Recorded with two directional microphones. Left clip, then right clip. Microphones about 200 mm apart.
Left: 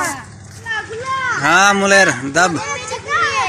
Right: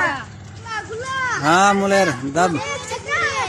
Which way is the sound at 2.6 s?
30° left (ahead or behind).